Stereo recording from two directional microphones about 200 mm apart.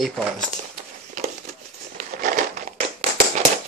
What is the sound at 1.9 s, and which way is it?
Crumpling, 40° right (ahead or behind).